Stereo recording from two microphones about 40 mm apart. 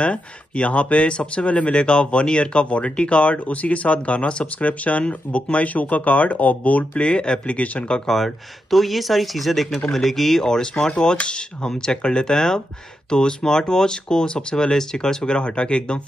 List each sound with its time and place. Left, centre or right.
0.0 s speech: left
7.0 s speech: left
8.1 s speech: centre
10.4 s speech: centre